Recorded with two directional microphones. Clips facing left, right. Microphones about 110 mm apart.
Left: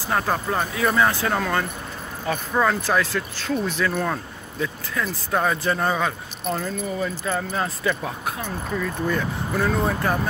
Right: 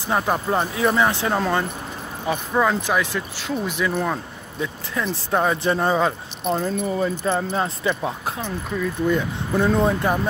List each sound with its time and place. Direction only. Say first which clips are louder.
0.0 s speech: right 2 dB; 20° right (ahead or behind)